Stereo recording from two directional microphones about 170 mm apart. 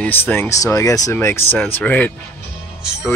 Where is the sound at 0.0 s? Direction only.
10° left (ahead or behind).